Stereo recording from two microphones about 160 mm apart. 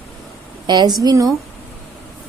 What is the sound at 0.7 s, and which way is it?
Speech, 25° right (ahead or behind).